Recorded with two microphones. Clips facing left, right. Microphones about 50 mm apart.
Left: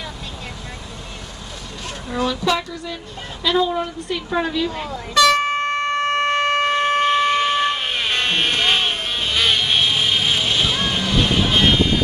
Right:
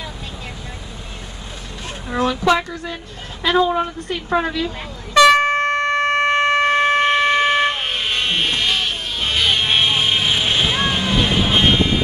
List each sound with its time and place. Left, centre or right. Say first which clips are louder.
1.9 s a woman's voice: right 2 dB; right
5.1 s air horn: right 4 dB; right
5.4 s shofar: right 3 dB; right
8.1 s vehicle: left 1 dB; left
8.5 s music: left 1 dB; left
9.5 s vehicle: right 2 dB; right